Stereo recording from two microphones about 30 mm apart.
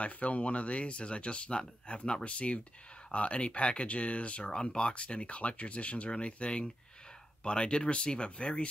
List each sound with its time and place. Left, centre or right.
0.0 s speech: left
4.4 s speech: left
4.9 s speech: left